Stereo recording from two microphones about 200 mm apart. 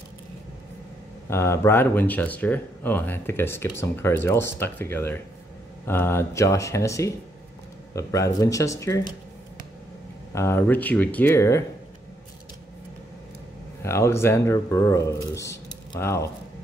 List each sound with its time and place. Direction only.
1.3 s speech: 15° left (ahead or behind)
10.3 s speech: 15° left (ahead or behind)
13.8 s speech: 15° left (ahead or behind)